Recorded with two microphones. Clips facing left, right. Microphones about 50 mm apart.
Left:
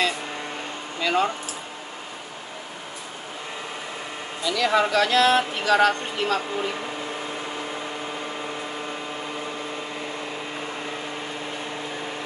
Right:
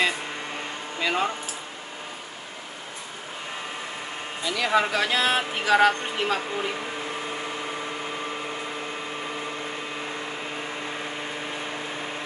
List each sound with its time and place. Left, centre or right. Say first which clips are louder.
1.0 s speech: left 3 dB; centre
4.4 s speech: left 3 dB; right
4.6 s speech: left 2 dB; centre